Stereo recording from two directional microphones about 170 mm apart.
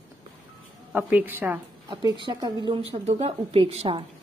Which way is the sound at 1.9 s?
25° right (ahead or behind).